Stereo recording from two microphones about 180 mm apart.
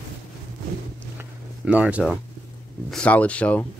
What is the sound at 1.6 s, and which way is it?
Speech, 5° right (ahead or behind).